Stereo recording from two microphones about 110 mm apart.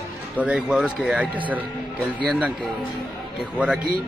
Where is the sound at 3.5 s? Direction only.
5° right (ahead or behind).